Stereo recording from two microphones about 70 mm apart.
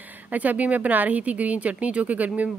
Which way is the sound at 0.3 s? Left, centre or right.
Right.